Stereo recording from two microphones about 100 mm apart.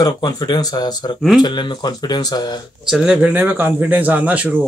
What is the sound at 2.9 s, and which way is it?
Speech, 5° right (ahead or behind).